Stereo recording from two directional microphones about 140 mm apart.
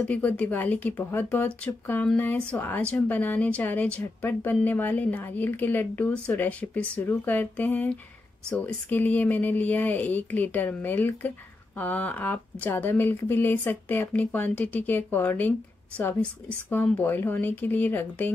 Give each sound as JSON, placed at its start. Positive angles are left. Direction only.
{"t": 0.0, "sound": "speech", "side_deg": 10}